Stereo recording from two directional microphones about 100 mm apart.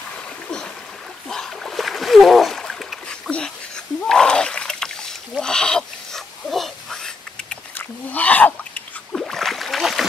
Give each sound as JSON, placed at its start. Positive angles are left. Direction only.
{"t": 1.3, "sound": "splash", "side_deg": 5}
{"t": 7.7, "sound": "a sound", "side_deg": 15}
{"t": 9.1, "sound": "splash", "side_deg": 5}